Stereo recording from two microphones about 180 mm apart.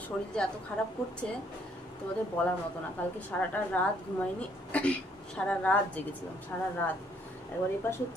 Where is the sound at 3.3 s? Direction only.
10° left (ahead or behind).